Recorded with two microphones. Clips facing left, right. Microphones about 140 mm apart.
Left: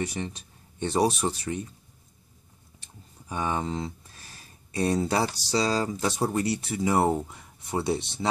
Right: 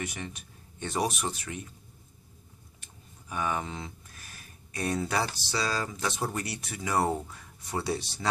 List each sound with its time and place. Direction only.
0.0 s speech: 30° left (ahead or behind)
2.8 s speech: 30° left (ahead or behind)